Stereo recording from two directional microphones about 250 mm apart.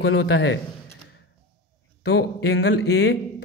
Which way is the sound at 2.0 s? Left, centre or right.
Left.